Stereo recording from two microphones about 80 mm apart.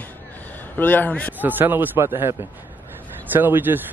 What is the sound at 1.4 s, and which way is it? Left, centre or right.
Speech, right.